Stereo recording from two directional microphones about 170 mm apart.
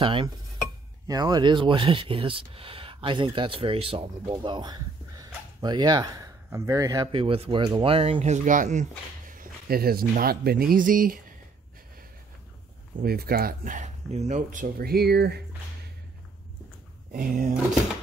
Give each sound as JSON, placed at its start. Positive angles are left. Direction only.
{"t": 0.0, "sound": "speech", "side_deg": -30}
{"t": 7.1, "sound": "speech", "side_deg": -30}
{"t": 9.3, "sound": "speech", "side_deg": -60}
{"t": 13.0, "sound": "speech", "side_deg": -65}
{"t": 17.1, "sound": "speech", "side_deg": -55}